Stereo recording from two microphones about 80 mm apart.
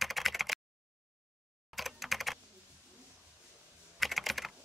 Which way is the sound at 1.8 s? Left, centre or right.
Centre.